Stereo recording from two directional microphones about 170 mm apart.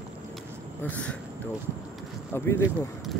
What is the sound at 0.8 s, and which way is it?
Speech, 10° left (ahead or behind).